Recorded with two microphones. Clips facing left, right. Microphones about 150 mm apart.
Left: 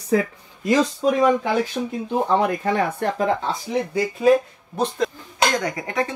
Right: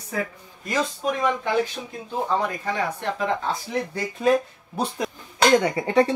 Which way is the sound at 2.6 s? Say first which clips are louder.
Left 5 dB; 50° left (ahead or behind).